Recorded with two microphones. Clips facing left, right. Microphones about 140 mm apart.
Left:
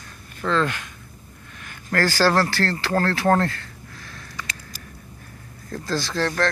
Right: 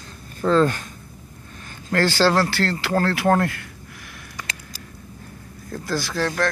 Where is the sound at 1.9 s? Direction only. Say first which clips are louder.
Right 1 dB; 20° right (ahead or behind).